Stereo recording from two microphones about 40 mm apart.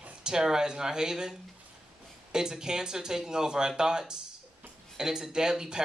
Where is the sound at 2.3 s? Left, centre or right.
Centre.